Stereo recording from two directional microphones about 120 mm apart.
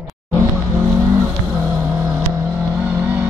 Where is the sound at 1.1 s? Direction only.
25° right (ahead or behind).